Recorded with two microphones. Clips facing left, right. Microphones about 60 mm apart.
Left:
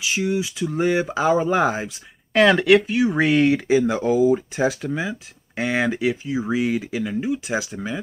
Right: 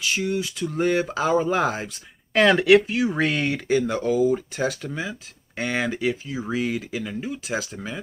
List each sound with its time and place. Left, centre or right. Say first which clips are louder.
0.0 s speech: left 2 dB; centre